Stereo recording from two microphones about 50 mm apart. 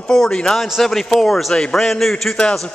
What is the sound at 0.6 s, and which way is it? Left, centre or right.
Speech, centre.